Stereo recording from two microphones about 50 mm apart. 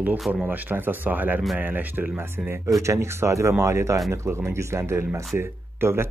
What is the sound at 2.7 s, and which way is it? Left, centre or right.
Speech, right.